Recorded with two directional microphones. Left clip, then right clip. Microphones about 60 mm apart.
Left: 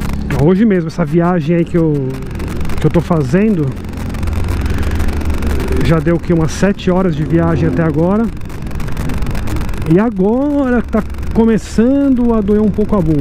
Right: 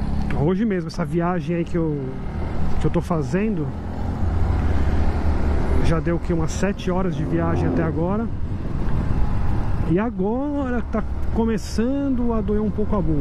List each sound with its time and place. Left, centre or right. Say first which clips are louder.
0.5 s speech: left 11 dB; left
5.9 s speech: left 11 dB; left
9.9 s speech: left 10 dB; left